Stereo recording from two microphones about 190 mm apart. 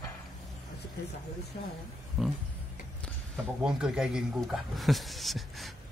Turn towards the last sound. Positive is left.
turn(degrees=0)  # may be behind; listen again after turning